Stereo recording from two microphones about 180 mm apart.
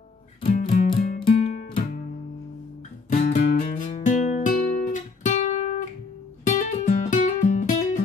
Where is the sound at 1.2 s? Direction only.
55° left (ahead or behind).